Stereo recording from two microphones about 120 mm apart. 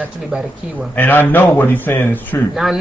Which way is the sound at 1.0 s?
15° left (ahead or behind).